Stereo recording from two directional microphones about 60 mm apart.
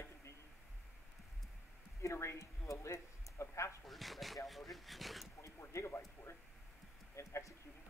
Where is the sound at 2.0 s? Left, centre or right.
Left.